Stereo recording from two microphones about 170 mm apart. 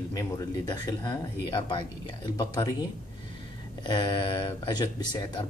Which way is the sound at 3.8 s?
25° left (ahead or behind).